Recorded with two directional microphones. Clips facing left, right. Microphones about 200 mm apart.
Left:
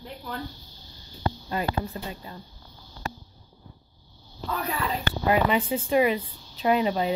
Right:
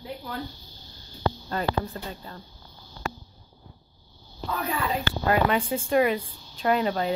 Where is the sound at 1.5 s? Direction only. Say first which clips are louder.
Left 2 dB; 10° left (ahead or behind).